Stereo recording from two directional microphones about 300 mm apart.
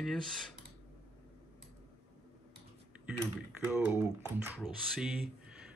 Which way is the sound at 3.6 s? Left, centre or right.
Centre.